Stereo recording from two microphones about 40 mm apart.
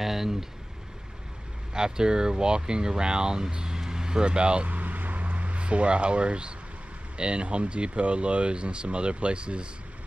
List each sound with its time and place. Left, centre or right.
0.0 s speech: centre
1.7 s speech: centre
4.6 s vehicle: right
7.2 s speech: right